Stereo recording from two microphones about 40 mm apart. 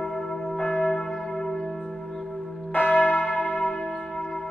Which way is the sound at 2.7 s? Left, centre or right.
Left.